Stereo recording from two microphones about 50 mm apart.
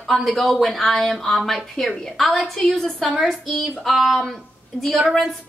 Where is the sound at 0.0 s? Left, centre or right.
Centre.